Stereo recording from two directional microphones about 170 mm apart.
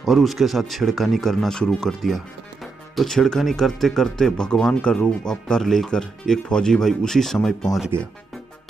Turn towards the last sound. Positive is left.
turn(degrees=0)  # may be behind; listen again after turning